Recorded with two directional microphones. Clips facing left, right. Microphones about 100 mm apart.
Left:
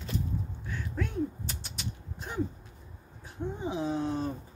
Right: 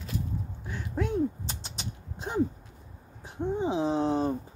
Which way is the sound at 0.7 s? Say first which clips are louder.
Right 6 dB; 20° right (ahead or behind).